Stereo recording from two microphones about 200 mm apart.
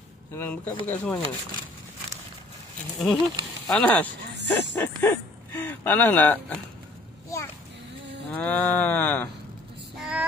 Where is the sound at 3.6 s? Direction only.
5° left (ahead or behind).